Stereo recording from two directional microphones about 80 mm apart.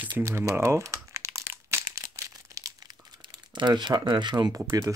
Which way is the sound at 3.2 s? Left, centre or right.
Right.